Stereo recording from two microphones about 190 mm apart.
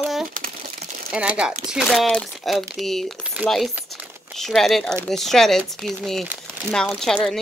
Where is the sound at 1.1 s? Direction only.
5° right (ahead or behind).